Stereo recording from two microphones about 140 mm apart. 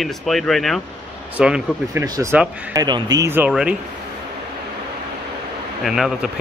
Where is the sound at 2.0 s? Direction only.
25° right (ahead or behind).